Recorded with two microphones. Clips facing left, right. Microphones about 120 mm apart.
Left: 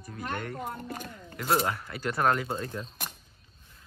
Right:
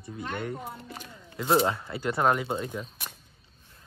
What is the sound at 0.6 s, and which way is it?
Speech, 50° left (ahead or behind).